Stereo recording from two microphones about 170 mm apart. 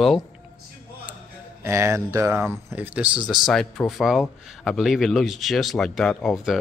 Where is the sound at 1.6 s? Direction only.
15° right (ahead or behind).